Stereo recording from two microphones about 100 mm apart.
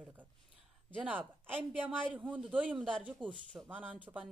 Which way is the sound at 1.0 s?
20° right (ahead or behind).